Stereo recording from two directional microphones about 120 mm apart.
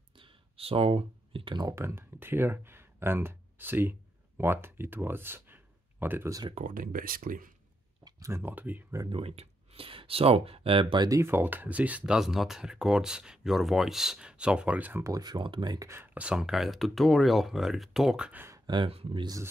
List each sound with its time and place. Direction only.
0.1 s clicking: 45° right (ahead or behind)
1.8 s speech: 20° right (ahead or behind)
7.3 s speech: 90° right
8.0 s speech: 25° right (ahead or behind)
9.1 s speech: 55° right (ahead or behind)
11.1 s speech: 20° right (ahead or behind)
15.0 s speech: 35° right (ahead or behind)
15.9 s speech: 15° right (ahead or behind)
18.7 s speech: 45° right (ahead or behind)
19.2 s speech: 25° right (ahead or behind)